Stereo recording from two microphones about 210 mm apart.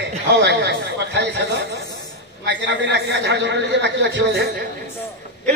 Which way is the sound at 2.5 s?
55° right (ahead or behind).